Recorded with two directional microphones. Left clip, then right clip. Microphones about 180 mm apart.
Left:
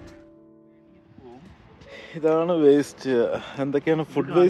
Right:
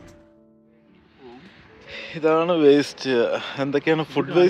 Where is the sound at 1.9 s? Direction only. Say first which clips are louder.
Right 2 dB; 15° left (ahead or behind).